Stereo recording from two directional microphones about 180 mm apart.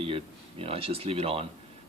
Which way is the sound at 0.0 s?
30° right (ahead or behind).